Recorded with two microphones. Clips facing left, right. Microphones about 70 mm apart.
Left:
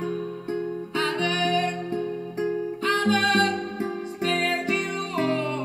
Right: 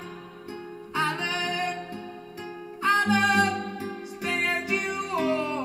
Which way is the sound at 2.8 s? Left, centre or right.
Centre.